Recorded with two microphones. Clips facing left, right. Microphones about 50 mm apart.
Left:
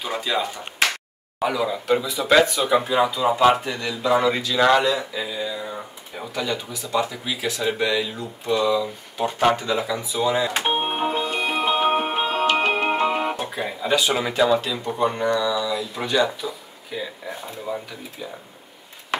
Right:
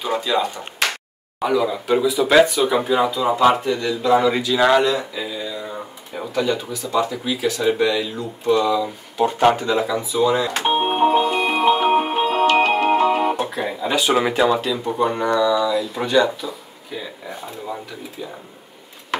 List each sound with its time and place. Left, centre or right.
0.0 s speech: centre
10.8 s music: centre
11.2 s music: centre
13.4 s guitar: centre
14.1 s speech: centre